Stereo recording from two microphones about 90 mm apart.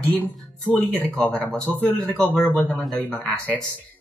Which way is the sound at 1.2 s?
10° left (ahead or behind).